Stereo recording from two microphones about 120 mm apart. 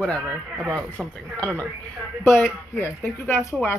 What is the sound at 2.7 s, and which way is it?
Speech, 15° left (ahead or behind).